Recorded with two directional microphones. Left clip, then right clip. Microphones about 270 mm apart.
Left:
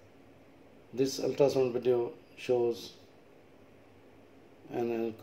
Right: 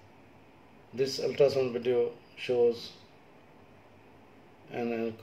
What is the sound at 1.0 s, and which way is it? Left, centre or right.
Speech, left.